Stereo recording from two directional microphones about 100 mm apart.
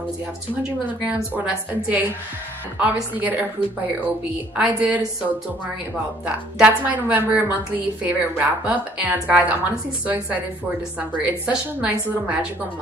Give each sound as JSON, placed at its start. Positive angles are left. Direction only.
{"t": 1.0, "sound": "a woman's voice", "side_deg": -15}
{"t": 4.6, "sound": "a woman's voice", "side_deg": -15}
{"t": 6.2, "sound": "a woman's voice", "side_deg": -15}